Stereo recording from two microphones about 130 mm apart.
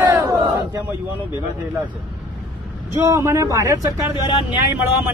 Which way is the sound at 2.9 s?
25° right (ahead or behind).